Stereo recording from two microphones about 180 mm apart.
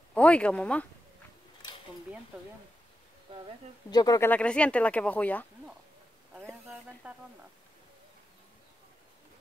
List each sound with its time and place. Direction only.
0.1 s speech: 5° left (ahead or behind)
3.3 s speech: 30° right (ahead or behind)
3.9 s speech: 20° left (ahead or behind)
4.3 s speech: 5° left (ahead or behind)
6.7 s speech: 10° right (ahead or behind)